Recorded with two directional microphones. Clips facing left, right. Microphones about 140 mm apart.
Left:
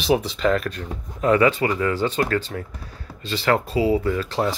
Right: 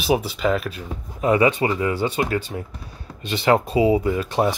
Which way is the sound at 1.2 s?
15° right (ahead or behind).